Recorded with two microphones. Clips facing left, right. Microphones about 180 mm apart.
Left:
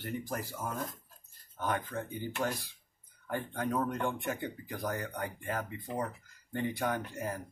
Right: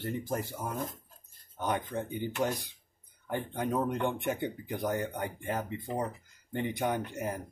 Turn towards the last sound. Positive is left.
turn(degrees=-20)  # may be behind; listen again after turning